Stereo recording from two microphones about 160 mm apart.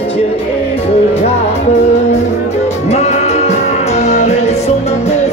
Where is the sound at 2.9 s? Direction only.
45° left (ahead or behind).